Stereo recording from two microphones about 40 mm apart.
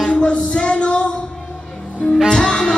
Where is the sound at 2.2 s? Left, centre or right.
Centre.